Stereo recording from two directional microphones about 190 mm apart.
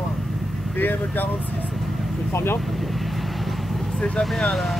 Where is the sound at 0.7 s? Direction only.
10° left (ahead or behind).